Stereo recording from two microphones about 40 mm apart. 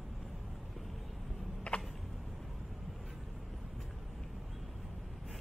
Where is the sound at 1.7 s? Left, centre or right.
Left.